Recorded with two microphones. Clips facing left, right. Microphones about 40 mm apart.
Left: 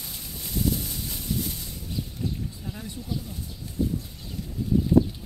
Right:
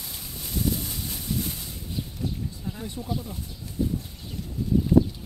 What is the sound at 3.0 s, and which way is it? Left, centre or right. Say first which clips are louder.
Speech: right 2 dB; right.